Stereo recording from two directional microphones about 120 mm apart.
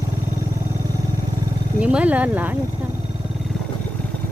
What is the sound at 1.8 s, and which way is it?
Speech, 10° right (ahead or behind).